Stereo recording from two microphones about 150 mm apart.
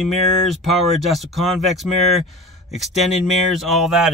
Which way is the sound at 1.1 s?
Centre (ahead or behind).